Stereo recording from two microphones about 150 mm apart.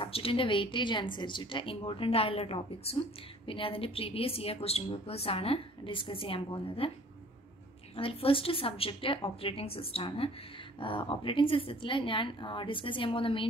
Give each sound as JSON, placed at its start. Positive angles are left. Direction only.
{"t": 0.0, "sound": "a woman's voice", "side_deg": 40}
{"t": 7.9, "sound": "a woman's voice", "side_deg": 40}